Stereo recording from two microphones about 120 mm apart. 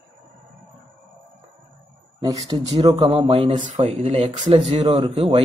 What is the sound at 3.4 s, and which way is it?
Speech, 50° right (ahead or behind).